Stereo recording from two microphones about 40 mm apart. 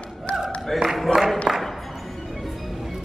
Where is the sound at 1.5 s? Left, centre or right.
Right.